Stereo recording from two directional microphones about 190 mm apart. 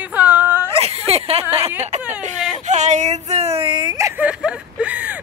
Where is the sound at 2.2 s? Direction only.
40° right (ahead or behind); by 5.2 s 10° right (ahead or behind).